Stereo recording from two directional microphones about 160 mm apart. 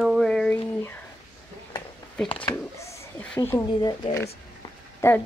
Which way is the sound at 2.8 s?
10° left (ahead or behind).